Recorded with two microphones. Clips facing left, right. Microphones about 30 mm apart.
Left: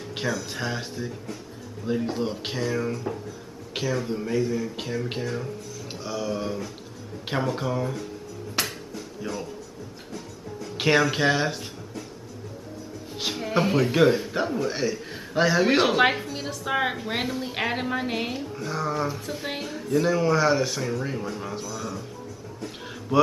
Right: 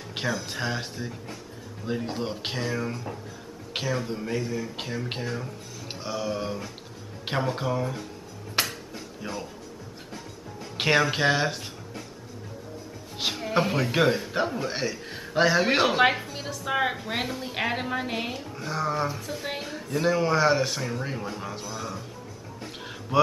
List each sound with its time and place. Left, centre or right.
0.1 s a sound: centre
0.5 s a man's voice: centre
8.6 s music: centre
9.2 s speech: centre
10.1 s music: centre
10.9 s a man's voice: centre
13.2 s music: centre
13.9 s a man's voice: centre
18.6 s speech: centre
19.1 s speech: centre
19.6 s speech: centre
21.6 s speech: centre